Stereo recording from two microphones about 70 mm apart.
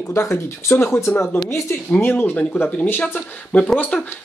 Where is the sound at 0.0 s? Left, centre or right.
Left.